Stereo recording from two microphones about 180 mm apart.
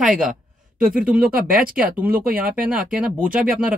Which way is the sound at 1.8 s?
10° right (ahead or behind).